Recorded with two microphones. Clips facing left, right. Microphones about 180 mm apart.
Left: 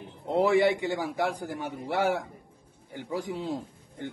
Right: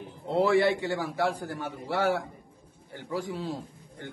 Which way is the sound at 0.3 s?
15° left (ahead or behind).